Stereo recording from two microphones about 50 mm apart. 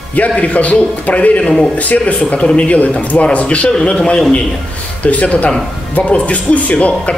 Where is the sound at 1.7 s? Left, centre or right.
Left.